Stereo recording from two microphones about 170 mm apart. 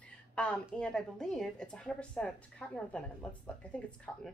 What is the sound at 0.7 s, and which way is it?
A woman's voice, 5° left (ahead or behind).